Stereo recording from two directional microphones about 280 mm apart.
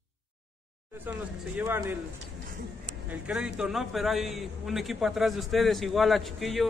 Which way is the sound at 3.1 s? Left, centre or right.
Centre.